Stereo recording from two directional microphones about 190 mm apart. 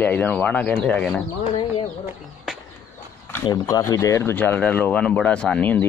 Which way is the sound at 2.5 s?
Centre (ahead or behind).